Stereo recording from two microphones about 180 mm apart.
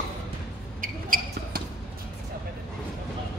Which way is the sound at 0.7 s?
50° right (ahead or behind).